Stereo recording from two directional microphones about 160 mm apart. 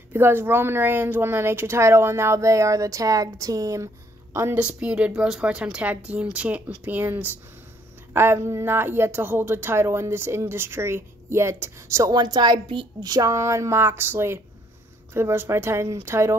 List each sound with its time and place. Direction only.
0.1 s a woman's voice: 15° right (ahead or behind)